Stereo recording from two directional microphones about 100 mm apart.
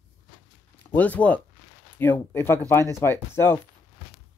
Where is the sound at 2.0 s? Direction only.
20° left (ahead or behind).